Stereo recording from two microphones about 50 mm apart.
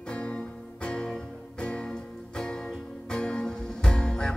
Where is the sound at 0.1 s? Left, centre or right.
Left.